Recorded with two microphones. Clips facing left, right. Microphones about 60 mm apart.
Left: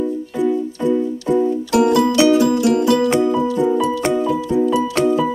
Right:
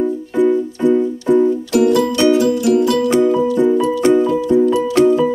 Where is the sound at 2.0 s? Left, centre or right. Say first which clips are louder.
Even; centre.